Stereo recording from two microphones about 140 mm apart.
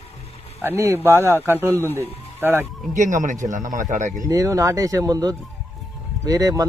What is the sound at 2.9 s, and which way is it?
Speech, 65° right (ahead or behind).